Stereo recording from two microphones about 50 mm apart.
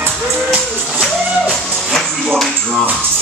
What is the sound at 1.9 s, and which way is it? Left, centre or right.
Speech, centre.